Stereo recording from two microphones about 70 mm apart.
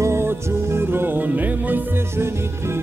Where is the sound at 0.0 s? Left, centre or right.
Right.